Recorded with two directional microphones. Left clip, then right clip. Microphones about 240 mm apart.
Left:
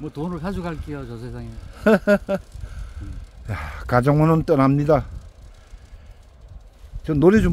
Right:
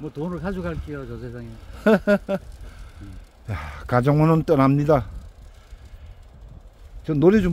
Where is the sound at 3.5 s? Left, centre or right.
Centre.